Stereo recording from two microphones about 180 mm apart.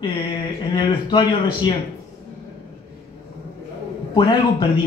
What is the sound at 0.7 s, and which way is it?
A man's voice, 25° left (ahead or behind).